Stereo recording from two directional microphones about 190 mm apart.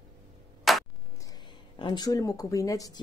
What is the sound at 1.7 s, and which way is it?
Speech, 25° left (ahead or behind).